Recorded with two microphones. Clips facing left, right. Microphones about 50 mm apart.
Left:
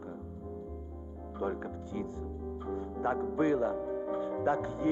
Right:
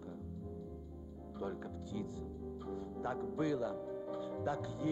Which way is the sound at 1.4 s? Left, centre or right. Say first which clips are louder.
Left 7 dB; left.